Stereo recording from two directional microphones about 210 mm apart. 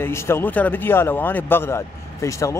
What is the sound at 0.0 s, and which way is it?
Speech, 10° left (ahead or behind).